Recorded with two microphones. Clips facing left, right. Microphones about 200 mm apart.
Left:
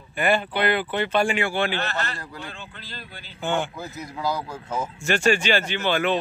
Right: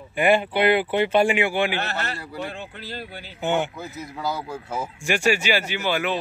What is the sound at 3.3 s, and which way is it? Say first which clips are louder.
Speech: right 2 dB; 20° right (ahead or behind).